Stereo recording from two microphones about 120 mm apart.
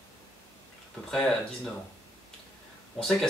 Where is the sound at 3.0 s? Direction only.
5° left (ahead or behind).